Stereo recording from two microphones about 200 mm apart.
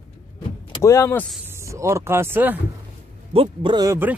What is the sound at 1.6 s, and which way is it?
Speech, 15° right (ahead or behind).